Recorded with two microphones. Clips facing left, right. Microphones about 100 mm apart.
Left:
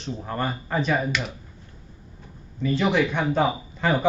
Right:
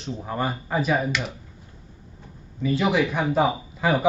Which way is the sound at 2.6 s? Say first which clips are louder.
Even; 5° right (ahead or behind).